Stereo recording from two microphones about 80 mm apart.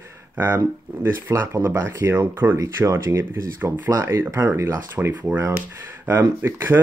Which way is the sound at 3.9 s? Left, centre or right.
Right.